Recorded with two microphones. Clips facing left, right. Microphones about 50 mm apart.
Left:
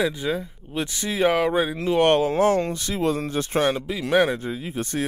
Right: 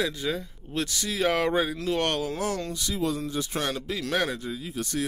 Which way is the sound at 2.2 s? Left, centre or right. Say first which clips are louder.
Left 10 dB; left.